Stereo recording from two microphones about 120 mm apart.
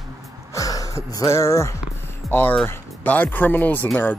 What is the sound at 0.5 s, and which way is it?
Music, 30° left (ahead or behind).